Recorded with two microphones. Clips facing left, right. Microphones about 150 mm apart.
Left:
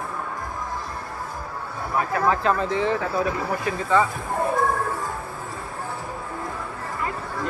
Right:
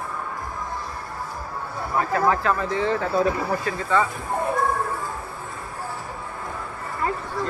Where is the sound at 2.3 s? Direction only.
20° left (ahead or behind).